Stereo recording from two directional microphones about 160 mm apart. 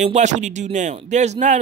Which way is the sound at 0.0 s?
45° right (ahead or behind).